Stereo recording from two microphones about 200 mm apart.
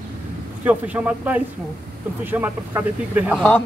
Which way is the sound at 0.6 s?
10° right (ahead or behind).